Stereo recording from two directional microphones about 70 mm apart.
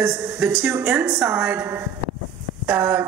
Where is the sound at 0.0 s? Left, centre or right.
Right.